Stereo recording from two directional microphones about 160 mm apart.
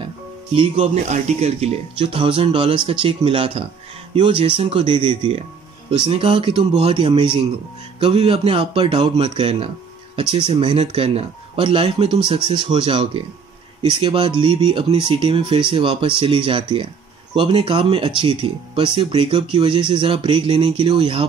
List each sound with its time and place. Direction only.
0.6 s speech: 40° right (ahead or behind)